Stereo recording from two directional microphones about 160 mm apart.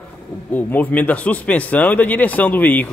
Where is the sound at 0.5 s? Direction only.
10° left (ahead or behind).